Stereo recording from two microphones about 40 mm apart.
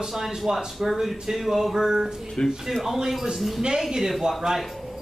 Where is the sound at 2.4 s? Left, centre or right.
Left.